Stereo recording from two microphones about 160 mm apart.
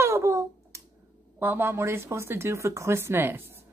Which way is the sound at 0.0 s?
15° right (ahead or behind).